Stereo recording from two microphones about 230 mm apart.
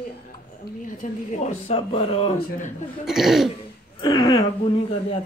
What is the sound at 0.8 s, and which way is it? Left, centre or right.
Speech, left.